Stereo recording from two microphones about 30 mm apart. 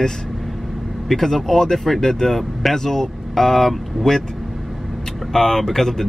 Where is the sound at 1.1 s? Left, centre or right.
Centre.